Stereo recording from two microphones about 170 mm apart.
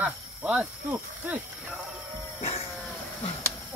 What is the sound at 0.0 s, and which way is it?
Speech, 10° right (ahead or behind).